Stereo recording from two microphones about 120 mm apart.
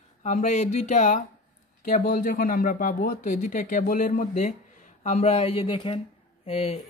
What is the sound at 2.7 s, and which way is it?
Speech, 90° left.